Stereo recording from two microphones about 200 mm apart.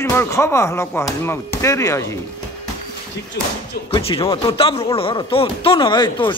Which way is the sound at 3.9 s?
25° left (ahead or behind).